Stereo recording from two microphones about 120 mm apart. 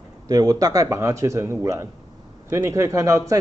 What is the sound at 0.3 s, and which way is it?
Speech, 30° right (ahead or behind).